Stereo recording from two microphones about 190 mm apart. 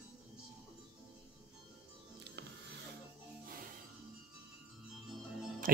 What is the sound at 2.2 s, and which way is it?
Music, 60° right (ahead or behind).